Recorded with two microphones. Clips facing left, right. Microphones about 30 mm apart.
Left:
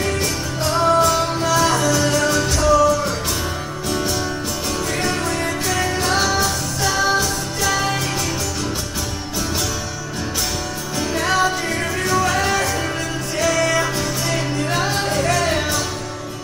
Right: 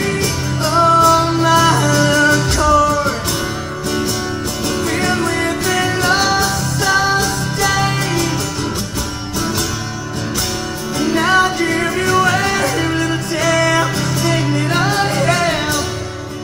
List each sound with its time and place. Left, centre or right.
0.7 s music: right
1.4 s music: right
5.1 s music: right
11.1 s music: right
11.4 s music: right
14.2 s music: right
15.1 s music: right